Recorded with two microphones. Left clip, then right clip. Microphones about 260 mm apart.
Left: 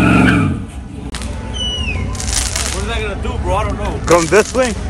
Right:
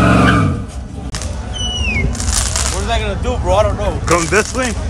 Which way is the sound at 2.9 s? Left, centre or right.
Right.